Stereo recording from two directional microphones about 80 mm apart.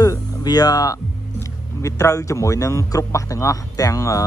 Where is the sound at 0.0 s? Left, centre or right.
Left.